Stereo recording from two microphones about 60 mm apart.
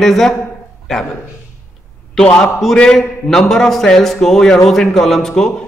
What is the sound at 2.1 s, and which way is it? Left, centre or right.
A man's voice, centre.